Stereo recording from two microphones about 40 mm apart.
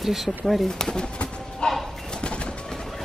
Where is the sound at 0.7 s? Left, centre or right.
Centre.